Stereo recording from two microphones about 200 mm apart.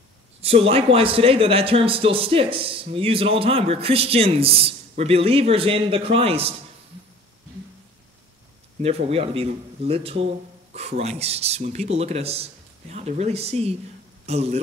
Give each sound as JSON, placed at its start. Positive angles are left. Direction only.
{"t": 0.4, "sound": "speech", "side_deg": -30}
{"t": 8.8, "sound": "speech", "side_deg": -30}